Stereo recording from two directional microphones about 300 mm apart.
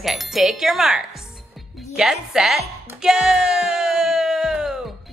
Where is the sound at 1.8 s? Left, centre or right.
Centre.